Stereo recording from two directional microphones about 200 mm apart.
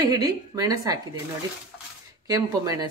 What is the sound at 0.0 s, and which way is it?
Speech, 20° right (ahead or behind).